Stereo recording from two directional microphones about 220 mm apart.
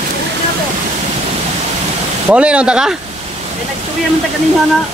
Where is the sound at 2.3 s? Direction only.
5° right (ahead or behind).